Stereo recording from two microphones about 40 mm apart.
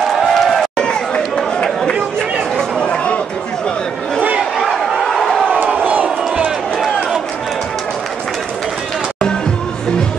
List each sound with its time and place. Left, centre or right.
0.0 s run: centre
2.8 s chatter: left
4.6 s a sound: centre
5.7 s crowd: right
6.8 s run: centre